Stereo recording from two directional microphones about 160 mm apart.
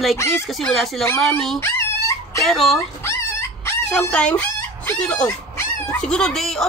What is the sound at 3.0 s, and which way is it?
Dog, 15° left (ahead or behind).